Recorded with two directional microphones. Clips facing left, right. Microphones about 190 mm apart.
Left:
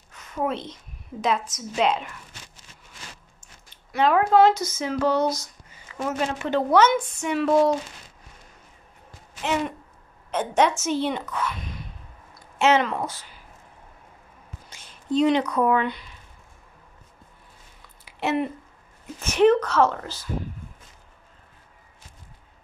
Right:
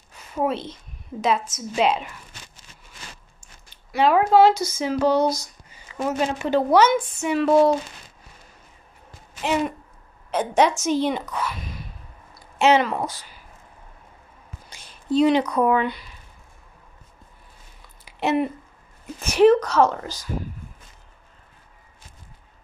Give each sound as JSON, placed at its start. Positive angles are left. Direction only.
{"t": 0.3, "sound": "a woman's voice", "side_deg": -5}
{"t": 3.7, "sound": "a sound", "side_deg": -10}
{"t": 4.3, "sound": "a woman's voice", "side_deg": -10}
{"t": 9.4, "sound": "a woman's voice", "side_deg": -15}
{"t": 14.9, "sound": "speech", "side_deg": -10}
{"t": 18.2, "sound": "a woman's voice", "side_deg": -15}